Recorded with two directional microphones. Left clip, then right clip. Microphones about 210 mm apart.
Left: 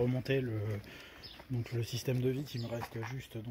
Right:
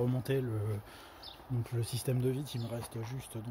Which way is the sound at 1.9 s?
Centre (ahead or behind).